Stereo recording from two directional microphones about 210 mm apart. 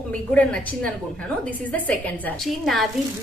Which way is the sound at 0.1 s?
5° left (ahead or behind).